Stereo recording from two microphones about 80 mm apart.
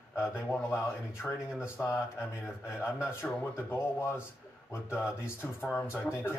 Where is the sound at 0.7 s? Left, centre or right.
Left.